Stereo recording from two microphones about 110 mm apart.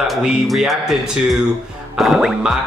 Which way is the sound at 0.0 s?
Centre (ahead or behind).